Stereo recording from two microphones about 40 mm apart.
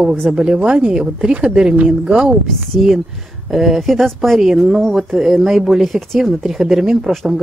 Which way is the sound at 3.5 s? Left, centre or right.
Centre.